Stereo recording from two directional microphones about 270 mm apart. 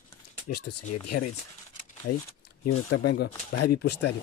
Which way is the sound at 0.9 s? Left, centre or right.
Left.